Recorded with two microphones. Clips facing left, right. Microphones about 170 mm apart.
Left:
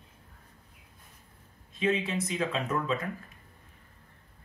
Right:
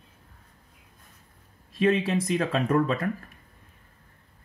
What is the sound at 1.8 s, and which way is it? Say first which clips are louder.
Speech: right 6 dB; 60° right (ahead or behind).